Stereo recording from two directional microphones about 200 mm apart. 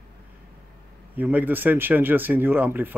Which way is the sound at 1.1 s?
10° right (ahead or behind).